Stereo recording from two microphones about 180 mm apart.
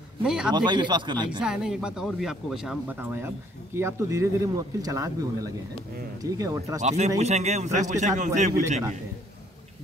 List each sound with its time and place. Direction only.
0.2 s a man's voice: 5° right (ahead or behind)
0.5 s speech: 25° right (ahead or behind)
1.4 s speech: 5° right (ahead or behind)
6.8 s a man's voice: 40° right (ahead or behind)